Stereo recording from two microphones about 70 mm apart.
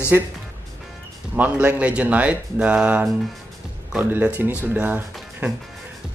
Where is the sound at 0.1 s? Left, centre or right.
Right.